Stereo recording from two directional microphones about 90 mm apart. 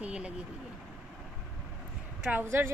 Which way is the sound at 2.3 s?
25° right (ahead or behind).